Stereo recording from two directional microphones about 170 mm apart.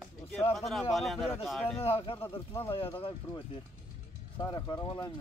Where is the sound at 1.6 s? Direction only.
35° left (ahead or behind).